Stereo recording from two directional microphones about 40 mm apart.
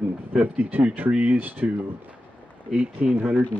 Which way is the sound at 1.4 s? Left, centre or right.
Right.